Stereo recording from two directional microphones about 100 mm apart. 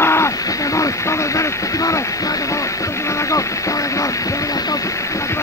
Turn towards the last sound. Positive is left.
turn(degrees=30)  # may be behind; listen again after turning